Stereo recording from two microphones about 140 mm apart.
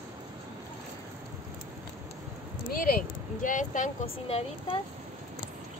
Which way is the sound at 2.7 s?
85° left.